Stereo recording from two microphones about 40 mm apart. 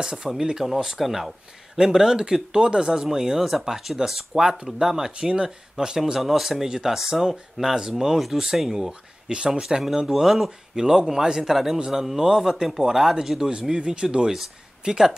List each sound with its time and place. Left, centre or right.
0.0 s speech: centre
0.9 s speech: centre
1.8 s speech: centre
6.1 s speech: centre
9.3 s speech: centre
13.5 s speech: right
14.3 s speech: centre